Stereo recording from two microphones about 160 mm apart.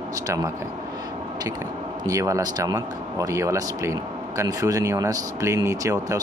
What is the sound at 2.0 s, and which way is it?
Speech, 20° right (ahead or behind).